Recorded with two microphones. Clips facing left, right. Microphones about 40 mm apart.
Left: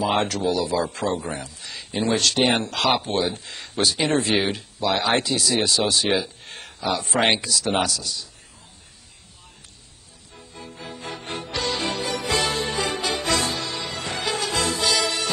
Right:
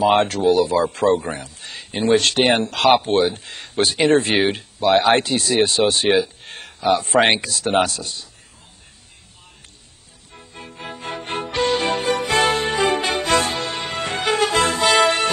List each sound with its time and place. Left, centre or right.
0.0 s a man's voice: right
2.0 s a man's voice: right
6.4 s a sound: right
7.3 s a man's voice: right
10.3 s music: right